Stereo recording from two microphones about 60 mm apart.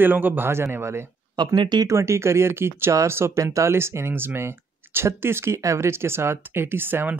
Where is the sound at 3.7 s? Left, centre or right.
Right.